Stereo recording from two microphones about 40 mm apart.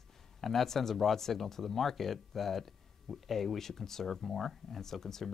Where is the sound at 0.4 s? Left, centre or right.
Centre.